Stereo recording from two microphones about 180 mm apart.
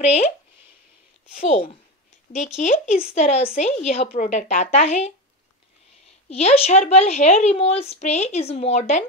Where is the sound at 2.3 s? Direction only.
40° left (ahead or behind).